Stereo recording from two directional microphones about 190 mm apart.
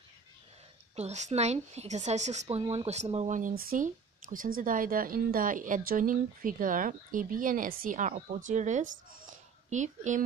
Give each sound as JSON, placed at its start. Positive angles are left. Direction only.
{"t": 0.9, "sound": "a woman's voice", "side_deg": -35}